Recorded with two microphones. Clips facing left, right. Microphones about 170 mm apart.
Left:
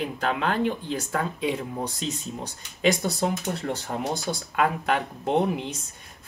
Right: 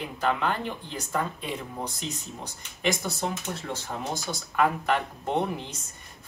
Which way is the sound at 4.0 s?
80° left.